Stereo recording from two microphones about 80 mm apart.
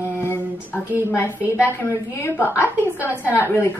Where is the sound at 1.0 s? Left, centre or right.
Left.